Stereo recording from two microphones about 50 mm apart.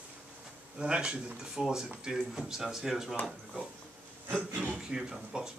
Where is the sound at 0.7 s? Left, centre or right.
Centre.